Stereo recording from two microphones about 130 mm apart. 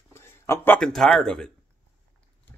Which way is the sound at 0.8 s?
5° left (ahead or behind).